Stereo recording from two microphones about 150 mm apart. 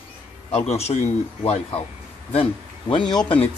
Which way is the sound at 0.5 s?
45° left (ahead or behind).